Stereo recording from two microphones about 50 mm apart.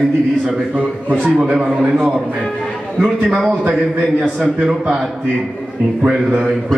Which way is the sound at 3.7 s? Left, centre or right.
Right.